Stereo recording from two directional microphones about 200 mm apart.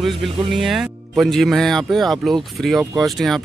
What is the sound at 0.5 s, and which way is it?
Speech, centre (ahead or behind).